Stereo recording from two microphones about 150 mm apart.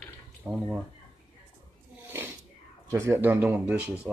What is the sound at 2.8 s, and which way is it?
Speech, 20° right (ahead or behind).